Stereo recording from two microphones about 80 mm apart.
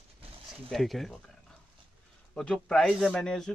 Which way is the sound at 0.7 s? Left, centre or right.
Centre.